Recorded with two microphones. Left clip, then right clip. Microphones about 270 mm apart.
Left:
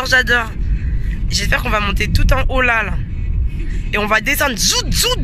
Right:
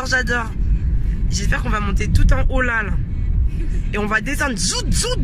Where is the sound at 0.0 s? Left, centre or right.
Centre.